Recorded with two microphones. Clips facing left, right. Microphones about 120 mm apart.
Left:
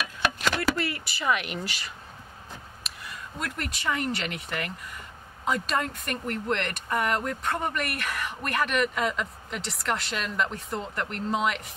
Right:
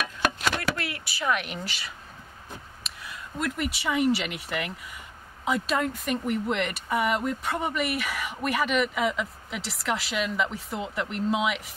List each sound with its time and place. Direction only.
0.7 s speech: centre (ahead or behind)